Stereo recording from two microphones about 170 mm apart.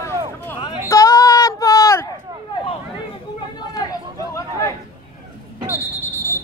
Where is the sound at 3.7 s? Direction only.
20° left (ahead or behind).